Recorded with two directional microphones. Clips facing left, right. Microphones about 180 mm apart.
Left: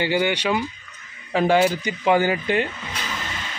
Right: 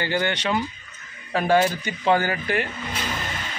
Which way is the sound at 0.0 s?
10° left (ahead or behind).